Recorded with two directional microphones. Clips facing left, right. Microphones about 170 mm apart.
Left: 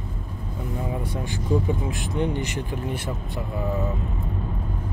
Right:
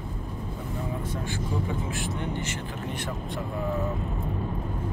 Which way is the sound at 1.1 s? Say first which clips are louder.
Left 2 dB; 15° left (ahead or behind).